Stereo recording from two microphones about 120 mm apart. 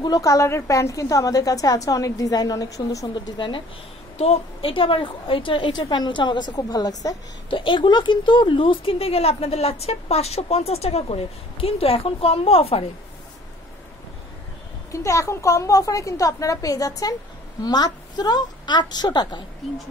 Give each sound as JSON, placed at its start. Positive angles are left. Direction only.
{"t": 0.0, "sound": "a woman's voice", "side_deg": 30}
{"t": 3.3, "sound": "speech", "side_deg": 45}
{"t": 4.2, "sound": "a woman's voice", "side_deg": 55}
{"t": 7.4, "sound": "speech", "side_deg": 45}
{"t": 14.9, "sound": "a woman's voice", "side_deg": 25}